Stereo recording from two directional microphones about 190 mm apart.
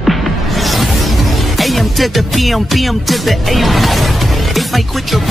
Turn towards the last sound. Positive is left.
turn(degrees=0)  # may be behind; listen again after turning